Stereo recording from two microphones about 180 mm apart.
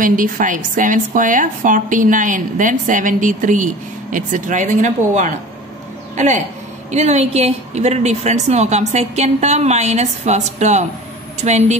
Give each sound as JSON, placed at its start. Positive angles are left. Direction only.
{"t": 0.0, "sound": "a woman's voice", "side_deg": -50}